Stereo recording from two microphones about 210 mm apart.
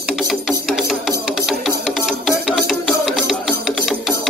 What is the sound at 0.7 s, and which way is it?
Music, centre (ahead or behind).